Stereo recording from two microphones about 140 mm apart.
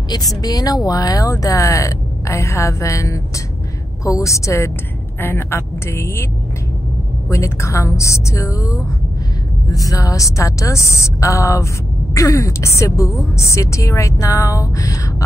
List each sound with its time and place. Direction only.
0.4 s a woman's voice: 25° left (ahead or behind)
7.2 s a woman's voice: 20° left (ahead or behind)